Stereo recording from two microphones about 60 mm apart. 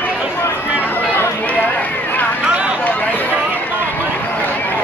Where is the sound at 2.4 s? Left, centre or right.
Centre.